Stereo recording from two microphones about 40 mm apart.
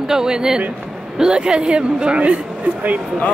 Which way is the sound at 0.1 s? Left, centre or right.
Centre.